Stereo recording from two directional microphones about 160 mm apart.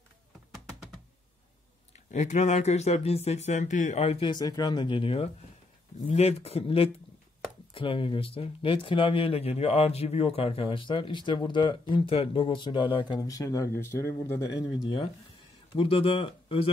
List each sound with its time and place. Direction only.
2.0 s speech: 45° left (ahead or behind); by 14.4 s 15° left (ahead or behind)
15.7 s speech: 35° left (ahead or behind)